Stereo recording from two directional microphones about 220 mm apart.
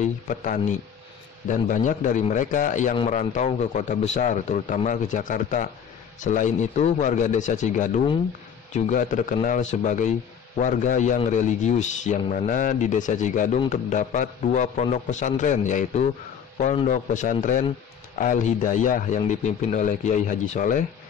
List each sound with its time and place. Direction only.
0.0 s a man's voice: 35° left (ahead or behind)